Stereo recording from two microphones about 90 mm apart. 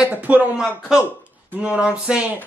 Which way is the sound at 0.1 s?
15° right (ahead or behind).